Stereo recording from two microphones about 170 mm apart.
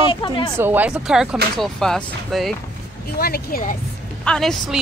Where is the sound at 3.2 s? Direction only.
60° left (ahead or behind).